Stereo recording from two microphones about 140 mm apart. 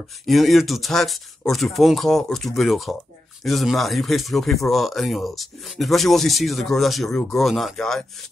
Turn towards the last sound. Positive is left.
turn(degrees=5)  # may be behind; listen again after turning